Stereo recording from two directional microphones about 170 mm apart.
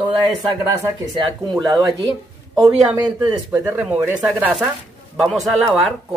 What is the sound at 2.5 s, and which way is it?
Speech, 20° right (ahead or behind).